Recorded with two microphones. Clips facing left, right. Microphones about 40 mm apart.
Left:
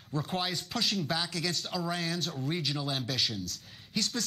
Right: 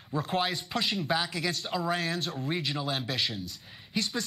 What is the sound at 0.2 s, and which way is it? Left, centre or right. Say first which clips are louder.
Speech: right 4 dB; centre.